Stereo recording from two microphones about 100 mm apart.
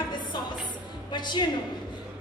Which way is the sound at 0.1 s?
50° left (ahead or behind).